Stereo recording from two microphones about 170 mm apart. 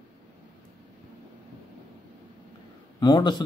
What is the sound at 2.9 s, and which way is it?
Speech, 25° left (ahead or behind).